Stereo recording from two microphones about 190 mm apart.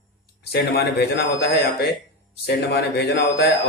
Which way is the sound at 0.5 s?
55° left (ahead or behind).